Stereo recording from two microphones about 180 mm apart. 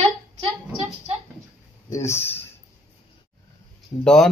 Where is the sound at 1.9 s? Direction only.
15° left (ahead or behind).